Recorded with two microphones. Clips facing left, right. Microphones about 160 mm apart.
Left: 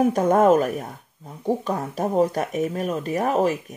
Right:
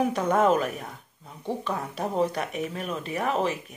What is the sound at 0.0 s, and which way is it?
A woman's voice, 45° left (ahead or behind).